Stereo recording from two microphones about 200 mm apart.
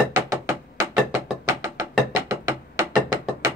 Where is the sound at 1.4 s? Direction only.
15° right (ahead or behind).